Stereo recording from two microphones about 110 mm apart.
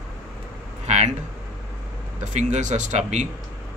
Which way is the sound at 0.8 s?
90° right.